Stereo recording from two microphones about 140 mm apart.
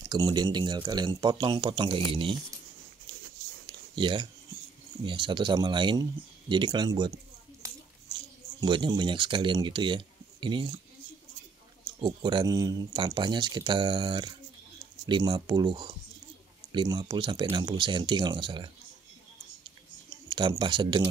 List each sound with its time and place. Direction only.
0.0 s speech: 30° right (ahead or behind)
3.6 s a sound: 35° right (ahead or behind)
5.0 s speech: 35° right (ahead or behind)
8.5 s speech: 35° right (ahead or behind)
12.0 s speech: 35° right (ahead or behind)
20.2 s speech: 35° right (ahead or behind)